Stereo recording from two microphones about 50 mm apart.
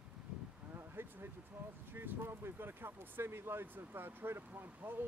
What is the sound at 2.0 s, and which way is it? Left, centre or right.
Speech, right.